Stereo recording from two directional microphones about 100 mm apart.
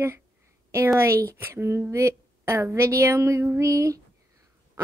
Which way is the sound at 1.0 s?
30° right (ahead or behind).